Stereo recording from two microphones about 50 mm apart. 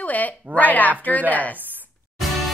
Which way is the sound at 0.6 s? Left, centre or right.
Left.